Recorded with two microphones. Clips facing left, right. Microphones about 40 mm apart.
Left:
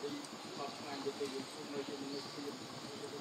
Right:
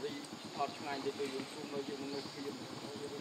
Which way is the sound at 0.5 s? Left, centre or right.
Right.